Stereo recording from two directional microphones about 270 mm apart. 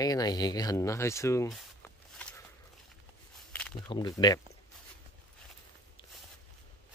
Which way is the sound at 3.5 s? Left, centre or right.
Centre.